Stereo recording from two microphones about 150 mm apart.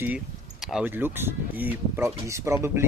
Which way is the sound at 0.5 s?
Centre (ahead or behind).